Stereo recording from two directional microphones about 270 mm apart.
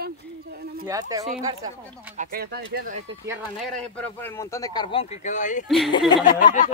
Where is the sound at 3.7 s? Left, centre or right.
Centre.